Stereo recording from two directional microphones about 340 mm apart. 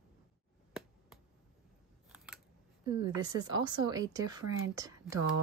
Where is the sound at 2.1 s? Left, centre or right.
Centre.